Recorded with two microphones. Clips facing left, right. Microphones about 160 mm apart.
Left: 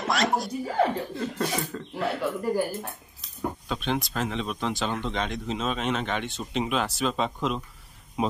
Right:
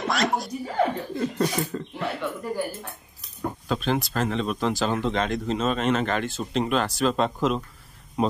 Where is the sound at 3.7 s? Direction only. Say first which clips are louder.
Right 5 dB; centre (ahead or behind).